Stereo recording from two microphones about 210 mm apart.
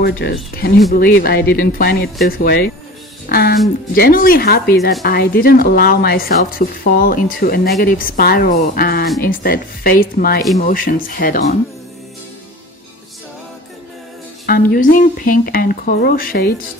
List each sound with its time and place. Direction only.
0.0 s speech: 50° left (ahead or behind)
14.4 s speech: 45° left (ahead or behind)